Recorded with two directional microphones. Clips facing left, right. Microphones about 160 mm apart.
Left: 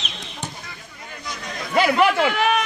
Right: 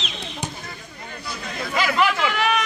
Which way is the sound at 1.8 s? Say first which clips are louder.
Left 4 dB; 55° left (ahead or behind).